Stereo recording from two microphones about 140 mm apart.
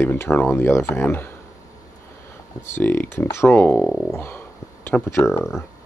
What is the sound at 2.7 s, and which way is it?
Speech, 15° left (ahead or behind).